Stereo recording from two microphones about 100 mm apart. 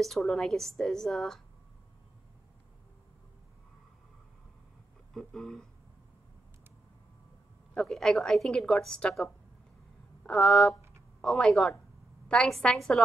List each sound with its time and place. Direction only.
0.0 s a woman's voice: 5° left (ahead or behind)
5.1 s speech: 5° left (ahead or behind)
7.7 s a woman's voice: 5° left (ahead or behind)